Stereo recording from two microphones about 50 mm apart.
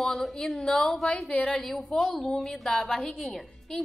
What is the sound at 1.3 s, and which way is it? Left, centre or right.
Speech, left.